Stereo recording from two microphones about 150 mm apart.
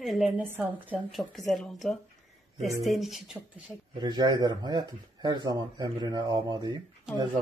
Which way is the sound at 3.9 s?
30° right (ahead or behind).